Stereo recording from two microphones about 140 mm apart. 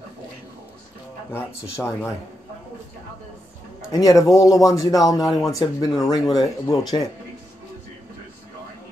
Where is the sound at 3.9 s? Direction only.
25° left (ahead or behind).